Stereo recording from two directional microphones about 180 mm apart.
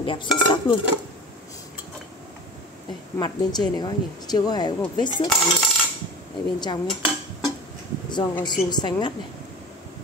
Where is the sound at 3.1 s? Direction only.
25° left (ahead or behind).